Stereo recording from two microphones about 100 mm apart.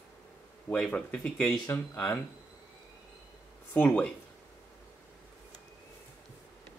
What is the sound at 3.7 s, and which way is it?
Speech, 15° left (ahead or behind).